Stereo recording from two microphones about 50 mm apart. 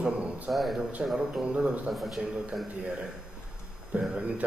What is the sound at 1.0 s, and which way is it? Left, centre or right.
Speech, right.